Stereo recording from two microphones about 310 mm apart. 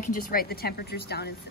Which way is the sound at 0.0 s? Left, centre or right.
Left.